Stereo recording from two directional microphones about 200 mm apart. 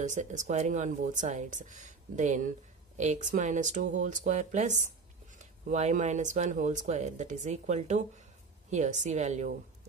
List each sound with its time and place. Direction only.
0.0 s speech: 40° right (ahead or behind)